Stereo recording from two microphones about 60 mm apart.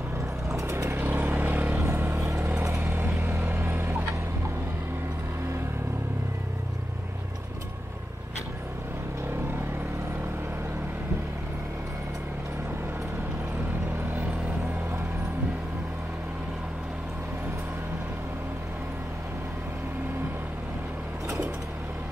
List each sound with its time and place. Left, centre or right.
0.6 s vehicle: right
0.9 s vehicle: right
1.9 s a sound: right
2.8 s vehicle: right
3.3 s vehicle: right